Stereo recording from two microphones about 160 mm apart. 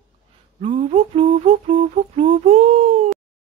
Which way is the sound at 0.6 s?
35° right (ahead or behind).